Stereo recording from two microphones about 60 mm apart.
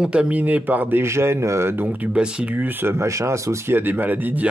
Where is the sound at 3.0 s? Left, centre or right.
Right.